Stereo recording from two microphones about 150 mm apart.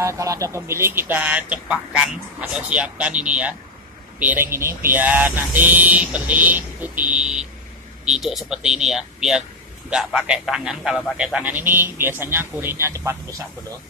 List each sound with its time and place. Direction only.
0.0 s a man's voice: 20° right (ahead or behind)